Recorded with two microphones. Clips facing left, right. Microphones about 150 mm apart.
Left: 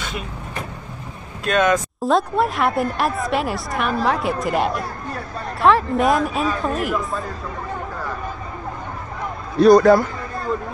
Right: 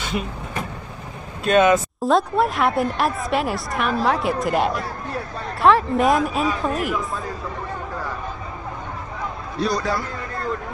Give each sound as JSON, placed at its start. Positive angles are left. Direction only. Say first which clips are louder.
{"t": 1.4, "sound": "speech", "louder": "right 2 dB", "side_deg": -5}
{"t": 9.6, "sound": "a man's voice", "louder": "left 12 dB", "side_deg": 55}